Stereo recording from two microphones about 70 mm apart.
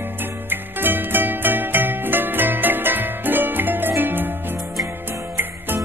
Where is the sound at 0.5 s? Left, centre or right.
Right.